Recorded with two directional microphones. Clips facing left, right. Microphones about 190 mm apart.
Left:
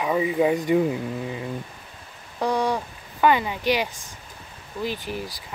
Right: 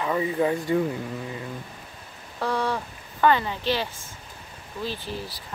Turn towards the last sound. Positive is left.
turn(degrees=15)  # may be behind; listen again after turning